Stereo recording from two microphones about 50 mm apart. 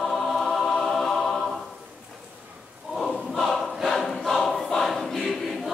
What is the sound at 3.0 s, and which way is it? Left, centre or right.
Choir, centre.